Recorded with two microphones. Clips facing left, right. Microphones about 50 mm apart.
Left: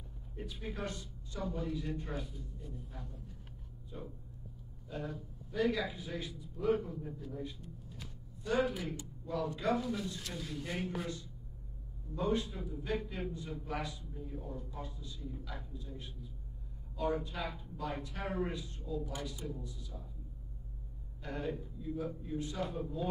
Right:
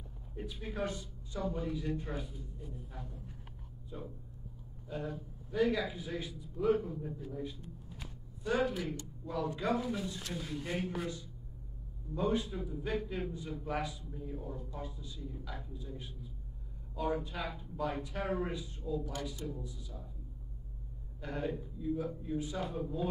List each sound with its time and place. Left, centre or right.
0.4 s a sound: centre
0.7 s a man's voice: centre
8.5 s a man's voice: centre
9.8 s a man's voice: centre
10.7 s a man's voice: centre
21.2 s a man's voice: centre